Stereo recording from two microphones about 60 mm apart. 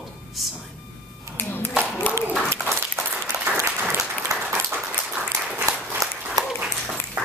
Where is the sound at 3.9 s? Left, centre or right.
Right.